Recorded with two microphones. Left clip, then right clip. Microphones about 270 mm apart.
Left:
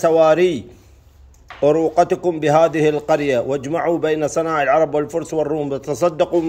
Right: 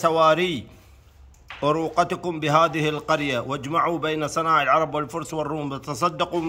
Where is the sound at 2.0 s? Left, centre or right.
Right.